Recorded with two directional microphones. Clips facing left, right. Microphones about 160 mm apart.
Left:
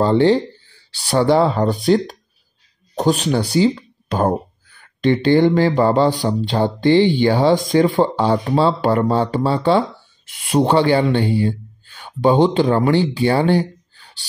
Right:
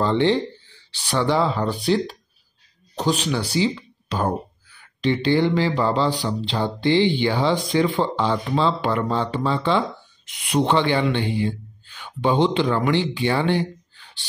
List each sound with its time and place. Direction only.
0.0 s speech: 40° left (ahead or behind)